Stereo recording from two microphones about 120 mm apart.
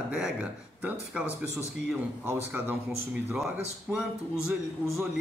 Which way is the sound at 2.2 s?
15° right (ahead or behind).